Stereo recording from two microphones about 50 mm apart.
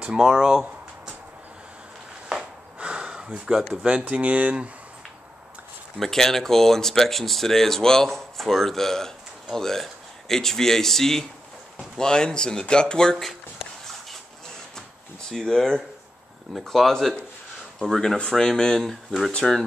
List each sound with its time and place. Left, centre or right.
0.0 s a sound: centre
2.2 s a sound: centre
3.4 s speech: centre
4.0 s speech: right
5.9 s speech: centre
15.2 s speech: centre
18.9 s speech: centre